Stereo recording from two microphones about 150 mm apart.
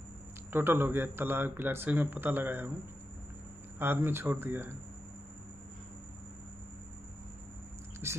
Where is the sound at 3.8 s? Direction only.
15° right (ahead or behind).